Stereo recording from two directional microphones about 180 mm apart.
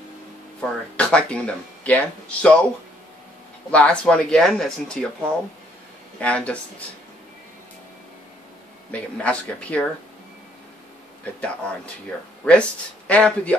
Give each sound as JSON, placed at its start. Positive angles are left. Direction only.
{"t": 0.6, "sound": "speech", "side_deg": 5}
{"t": 3.7, "sound": "speech", "side_deg": 5}
{"t": 6.1, "sound": "speech", "side_deg": 5}
{"t": 9.2, "sound": "speech", "side_deg": 5}
{"t": 11.4, "sound": "speech", "side_deg": 5}